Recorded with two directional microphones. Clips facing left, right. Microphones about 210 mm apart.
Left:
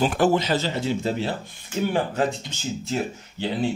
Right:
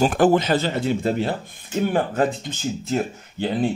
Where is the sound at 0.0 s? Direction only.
50° right (ahead or behind).